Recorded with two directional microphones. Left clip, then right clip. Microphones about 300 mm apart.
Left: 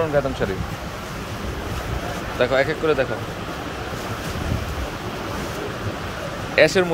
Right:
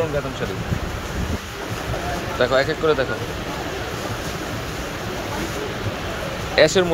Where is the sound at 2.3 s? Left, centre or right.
Centre.